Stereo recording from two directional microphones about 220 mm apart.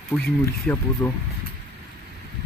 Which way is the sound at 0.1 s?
5° left (ahead or behind).